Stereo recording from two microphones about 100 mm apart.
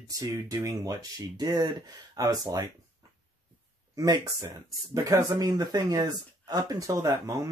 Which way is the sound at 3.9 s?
40° right (ahead or behind).